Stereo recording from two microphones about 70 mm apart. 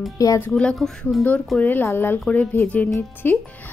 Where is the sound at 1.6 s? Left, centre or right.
Left.